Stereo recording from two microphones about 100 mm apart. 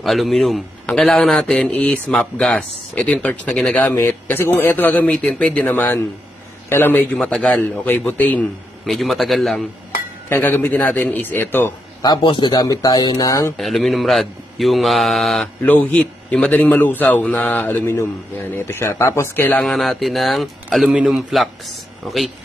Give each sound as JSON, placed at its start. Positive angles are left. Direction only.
{"t": 0.0, "sound": "a man's voice", "side_deg": 0}
{"t": 7.2, "sound": "a man's voice", "side_deg": 10}
{"t": 8.8, "sound": "a man's voice", "side_deg": 0}
{"t": 10.3, "sound": "a man's voice", "side_deg": 20}
{"t": 12.0, "sound": "a man's voice", "side_deg": 45}
{"t": 12.6, "sound": "speech", "side_deg": 40}
{"t": 13.6, "sound": "a man's voice", "side_deg": 0}
{"t": 15.4, "sound": "a man's voice", "side_deg": 15}
{"t": 19.6, "sound": "a man's voice", "side_deg": 0}